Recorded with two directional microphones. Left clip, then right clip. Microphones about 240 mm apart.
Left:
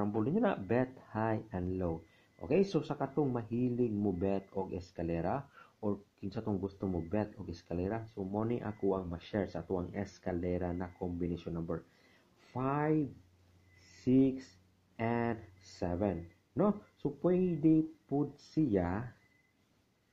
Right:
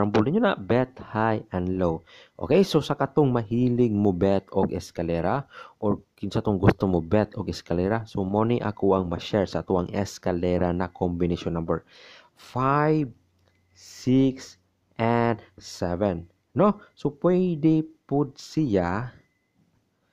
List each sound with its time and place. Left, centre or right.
0.0 s speech: right